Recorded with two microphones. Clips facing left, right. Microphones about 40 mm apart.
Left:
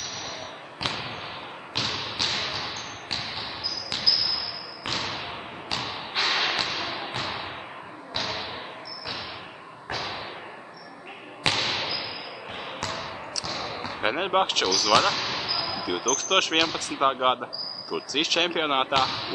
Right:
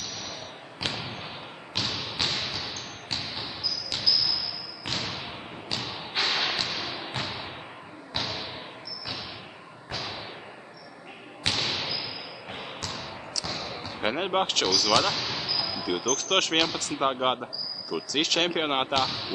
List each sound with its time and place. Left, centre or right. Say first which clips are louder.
0.7 s thump: left 2 dB; centre
2.2 s a sound: left 2 dB; centre
9.8 s thump: left 3 dB; centre
11.4 s basketball bounce: left 3 dB; centre
13.6 s speech: left 3 dB; centre
18.9 s speech: left 3 dB; centre